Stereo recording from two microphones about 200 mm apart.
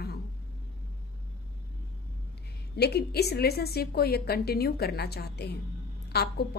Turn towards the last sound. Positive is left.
turn(degrees=55)  # may be behind; listen again after turning